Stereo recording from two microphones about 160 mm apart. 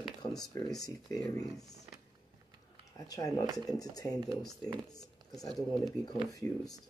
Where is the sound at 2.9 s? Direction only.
20° left (ahead or behind).